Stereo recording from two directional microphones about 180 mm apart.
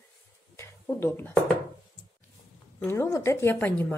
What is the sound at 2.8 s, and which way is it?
A woman's voice, 15° left (ahead or behind).